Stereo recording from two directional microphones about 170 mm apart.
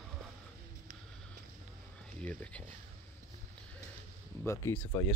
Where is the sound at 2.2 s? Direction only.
10° left (ahead or behind).